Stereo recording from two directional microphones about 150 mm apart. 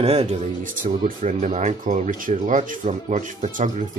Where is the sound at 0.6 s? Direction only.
60° right (ahead or behind).